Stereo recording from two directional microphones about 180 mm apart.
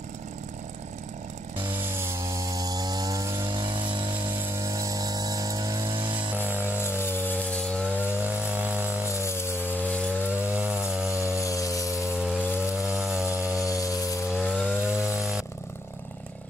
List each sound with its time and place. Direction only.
1.7 s chainsaw: 10° right (ahead or behind)
3.4 s a sound: 25° right (ahead or behind)
6.3 s music: 10° right (ahead or behind)
7.0 s chainsaw: 10° left (ahead or behind)
8.1 s chainsaw: 10° right (ahead or behind)
9.2 s chainsaw: 15° left (ahead or behind)
10.2 s chainsaw: 10° right (ahead or behind)
11.4 s a sound: 20° left (ahead or behind)
11.9 s rattle: 5° right (ahead or behind)
12.5 s sawing: 5° right (ahead or behind)
13.7 s a sound: 20° left (ahead or behind)
14.3 s chainsaw: centre (ahead or behind)